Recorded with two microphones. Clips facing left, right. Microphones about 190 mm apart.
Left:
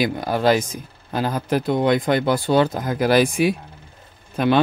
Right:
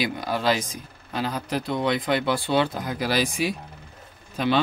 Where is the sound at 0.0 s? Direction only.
50° left (ahead or behind).